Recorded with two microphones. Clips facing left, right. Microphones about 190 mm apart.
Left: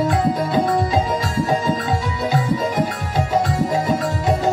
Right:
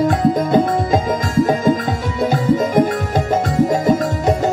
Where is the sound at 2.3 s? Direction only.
50° right (ahead or behind).